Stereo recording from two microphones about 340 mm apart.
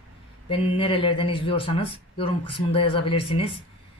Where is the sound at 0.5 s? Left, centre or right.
Centre.